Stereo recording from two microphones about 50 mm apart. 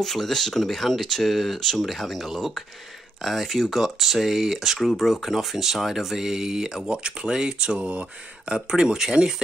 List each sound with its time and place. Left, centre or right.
0.0 s speech: centre